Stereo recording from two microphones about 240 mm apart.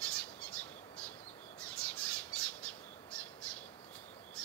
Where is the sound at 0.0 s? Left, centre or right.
Centre.